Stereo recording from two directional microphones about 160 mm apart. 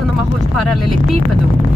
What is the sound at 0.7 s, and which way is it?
Speech, centre (ahead or behind).